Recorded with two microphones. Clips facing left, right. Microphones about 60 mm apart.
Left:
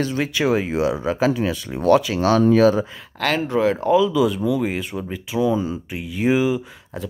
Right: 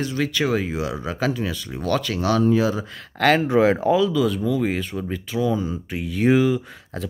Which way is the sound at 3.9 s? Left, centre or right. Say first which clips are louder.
Left 2 dB; centre.